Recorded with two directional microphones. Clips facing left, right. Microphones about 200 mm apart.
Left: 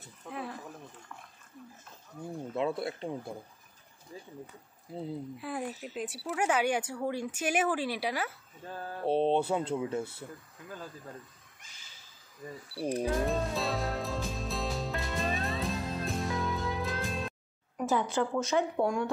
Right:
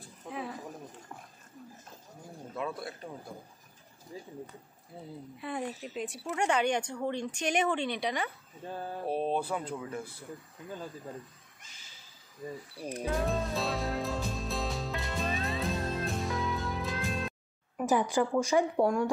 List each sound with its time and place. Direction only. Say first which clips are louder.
0.3 s a sound: right 1 dB; centre (ahead or behind)
2.5 s speech: left 5 dB; 25° left (ahead or behind)
5.4 s speech: even; 5° left (ahead or behind)
8.6 s speech: right 2 dB; 15° right (ahead or behind)
9.0 s speech: left 5 dB; 25° left (ahead or behind)
10.7 s speech: right 3 dB; 20° right (ahead or behind)
12.7 s speech: left 10 dB; 30° left (ahead or behind)
13.0 s music: right 1 dB; centre (ahead or behind)
17.8 s speech: right 2 dB; 15° right (ahead or behind)